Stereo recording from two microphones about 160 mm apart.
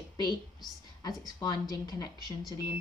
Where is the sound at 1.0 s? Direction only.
25° left (ahead or behind).